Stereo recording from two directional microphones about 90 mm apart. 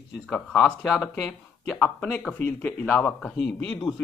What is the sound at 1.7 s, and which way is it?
Speech, 15° left (ahead or behind).